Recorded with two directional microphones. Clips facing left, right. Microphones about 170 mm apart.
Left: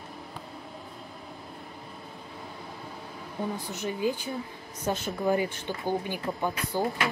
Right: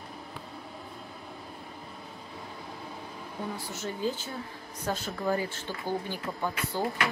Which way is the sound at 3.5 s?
15° left (ahead or behind).